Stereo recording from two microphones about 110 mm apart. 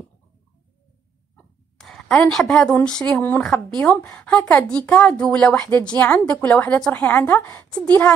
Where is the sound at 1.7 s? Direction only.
5° left (ahead or behind).